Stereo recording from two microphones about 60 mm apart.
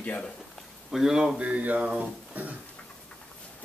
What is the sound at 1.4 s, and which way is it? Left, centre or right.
Speech, right.